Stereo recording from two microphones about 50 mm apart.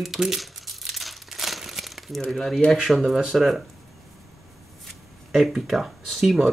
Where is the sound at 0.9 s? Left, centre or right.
Centre.